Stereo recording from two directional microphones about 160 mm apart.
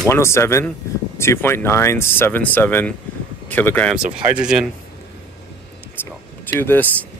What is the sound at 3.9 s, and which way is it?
Speech, 5° right (ahead or behind).